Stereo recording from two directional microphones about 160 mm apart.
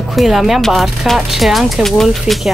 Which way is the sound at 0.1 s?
Centre (ahead or behind).